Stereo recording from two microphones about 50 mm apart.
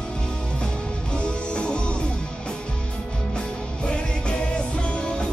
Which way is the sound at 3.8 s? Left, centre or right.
Left.